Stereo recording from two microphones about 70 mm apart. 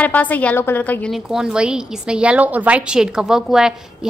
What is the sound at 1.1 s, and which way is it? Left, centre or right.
A woman's voice, centre.